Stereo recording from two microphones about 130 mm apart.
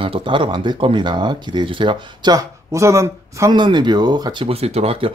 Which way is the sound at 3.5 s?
35° right (ahead or behind).